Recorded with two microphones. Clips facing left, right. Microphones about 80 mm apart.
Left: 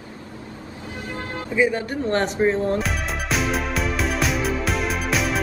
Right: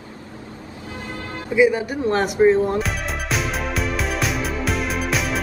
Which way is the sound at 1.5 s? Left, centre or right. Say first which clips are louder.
Right 4 dB; centre.